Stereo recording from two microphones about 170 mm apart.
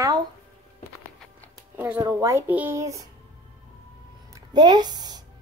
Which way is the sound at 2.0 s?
20° right (ahead or behind).